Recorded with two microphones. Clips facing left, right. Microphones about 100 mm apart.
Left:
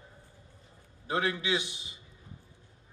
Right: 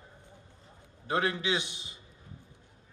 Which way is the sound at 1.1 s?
25° right (ahead or behind).